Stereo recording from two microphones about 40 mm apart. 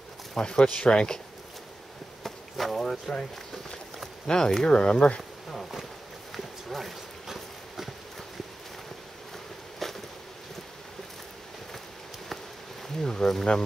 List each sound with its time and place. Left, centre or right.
0.3 s speech: centre
2.2 s chop: centre
4.3 s speech: centre
4.7 s speech: left
6.3 s clip-clop: centre
9.8 s a sound: centre
12.8 s speech: centre